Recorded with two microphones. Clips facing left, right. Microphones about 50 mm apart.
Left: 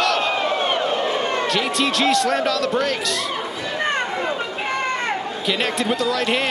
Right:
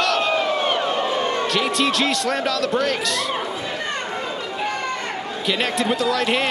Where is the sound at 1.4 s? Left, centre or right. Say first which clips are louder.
Even; centre.